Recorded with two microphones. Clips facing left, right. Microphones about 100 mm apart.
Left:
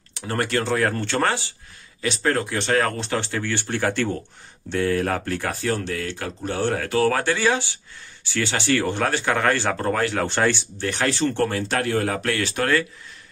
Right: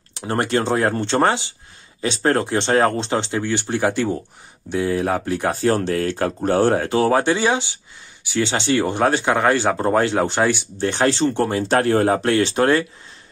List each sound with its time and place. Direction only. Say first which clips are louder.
0.1 s speech: right 4 dB; 25° right (ahead or behind)
2.0 s speech: right 4 dB; 30° right (ahead or behind); by 5.5 s 15° right (ahead or behind)
5.5 s speech: right 9 dB; 35° right (ahead or behind)
6.8 s speech: right 3 dB; 25° right (ahead or behind)
10.9 s speech: right 4 dB; 25° right (ahead or behind)
11.7 s speech: right 6 dB; 35° right (ahead or behind)